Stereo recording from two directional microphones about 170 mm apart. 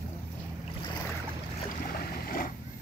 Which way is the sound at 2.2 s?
55° left (ahead or behind).